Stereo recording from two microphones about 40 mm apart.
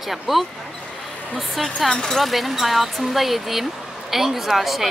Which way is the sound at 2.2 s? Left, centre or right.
Centre.